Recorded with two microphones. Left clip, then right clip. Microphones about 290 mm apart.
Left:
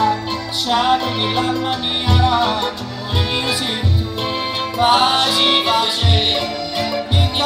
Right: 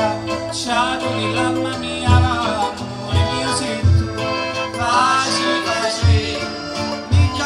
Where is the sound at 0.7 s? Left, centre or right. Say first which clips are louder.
Left 3 dB; centre.